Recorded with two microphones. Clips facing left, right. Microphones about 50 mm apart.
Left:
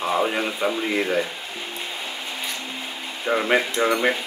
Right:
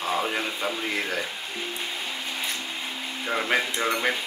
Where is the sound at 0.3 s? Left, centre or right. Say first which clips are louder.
Left 4 dB; centre.